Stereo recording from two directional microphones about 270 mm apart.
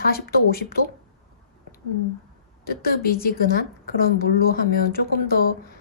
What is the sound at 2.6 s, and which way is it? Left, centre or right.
A woman's voice, left.